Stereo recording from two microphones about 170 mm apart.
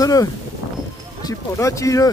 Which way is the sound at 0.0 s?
20° left (ahead or behind).